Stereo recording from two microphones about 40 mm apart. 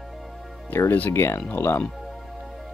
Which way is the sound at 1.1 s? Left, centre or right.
Left.